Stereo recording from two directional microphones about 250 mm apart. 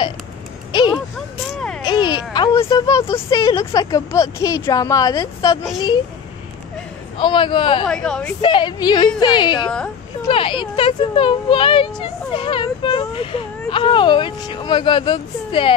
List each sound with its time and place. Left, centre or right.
0.7 s a sound: centre
1.5 s a sound: centre
1.8 s speech: centre
7.2 s speech: centre
7.8 s a woman's voice: centre
8.4 s a woman's voice: centre